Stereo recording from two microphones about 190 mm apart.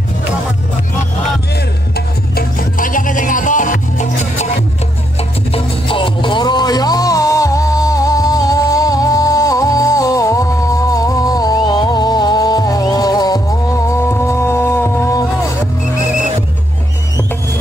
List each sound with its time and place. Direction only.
2.0 s music: 50° left (ahead or behind)
5.5 s music: 25° left (ahead or behind)